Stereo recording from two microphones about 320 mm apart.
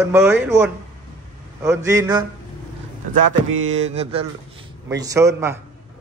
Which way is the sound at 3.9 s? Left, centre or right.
Centre.